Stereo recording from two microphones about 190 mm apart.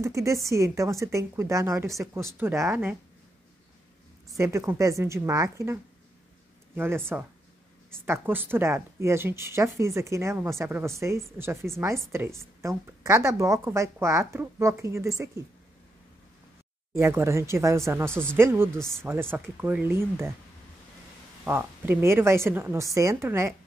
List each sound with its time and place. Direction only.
0.0 s speech: 15° right (ahead or behind)
4.3 s speech: 15° right (ahead or behind)
16.9 s speech: 15° right (ahead or behind)
21.5 s speech: 15° right (ahead or behind)